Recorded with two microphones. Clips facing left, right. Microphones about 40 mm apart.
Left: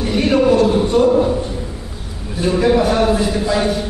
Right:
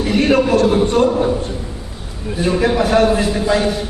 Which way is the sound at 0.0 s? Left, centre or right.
Right.